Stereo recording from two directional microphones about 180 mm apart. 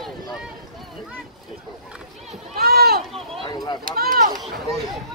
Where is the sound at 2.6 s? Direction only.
60° right (ahead or behind).